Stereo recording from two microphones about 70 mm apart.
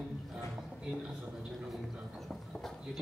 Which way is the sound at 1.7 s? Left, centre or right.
Centre.